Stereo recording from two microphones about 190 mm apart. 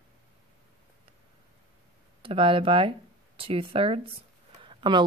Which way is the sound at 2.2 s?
25° right (ahead or behind).